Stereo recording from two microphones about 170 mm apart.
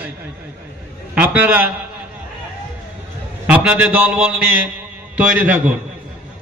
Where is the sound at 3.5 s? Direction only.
10° right (ahead or behind).